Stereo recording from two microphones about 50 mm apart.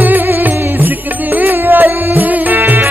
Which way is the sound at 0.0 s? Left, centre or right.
Right.